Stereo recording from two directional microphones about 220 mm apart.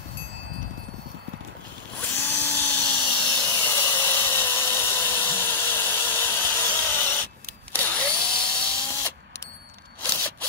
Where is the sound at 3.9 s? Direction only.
10° left (ahead or behind).